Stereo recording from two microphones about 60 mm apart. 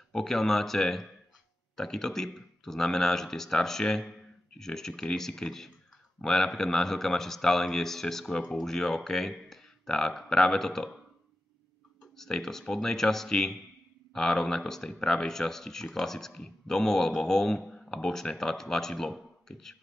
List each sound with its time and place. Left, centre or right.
0.1 s speech: centre
12.2 s speech: centre